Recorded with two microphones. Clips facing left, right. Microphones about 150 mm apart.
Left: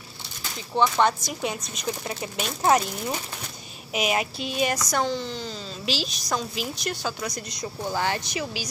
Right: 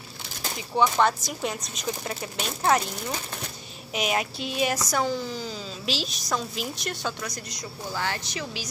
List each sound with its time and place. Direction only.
0.7 s a woman's voice: centre (ahead or behind)
2.6 s speech: 15° left (ahead or behind)
3.9 s a woman's voice: 5° left (ahead or behind)
7.9 s speech: 20° left (ahead or behind)